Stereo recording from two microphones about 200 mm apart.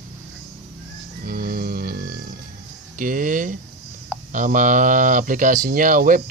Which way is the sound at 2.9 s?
40° right (ahead or behind).